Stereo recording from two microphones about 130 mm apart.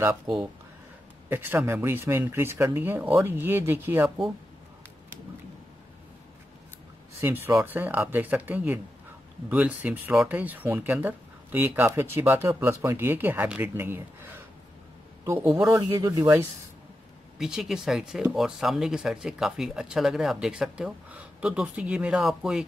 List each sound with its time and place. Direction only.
1.3 s speech: 15° right (ahead or behind)
7.2 s speech: 15° right (ahead or behind)
15.6 s speech: 25° right (ahead or behind)
17.4 s speech: centre (ahead or behind)